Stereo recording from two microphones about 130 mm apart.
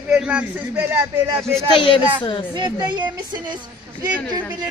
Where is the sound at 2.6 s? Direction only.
35° right (ahead or behind).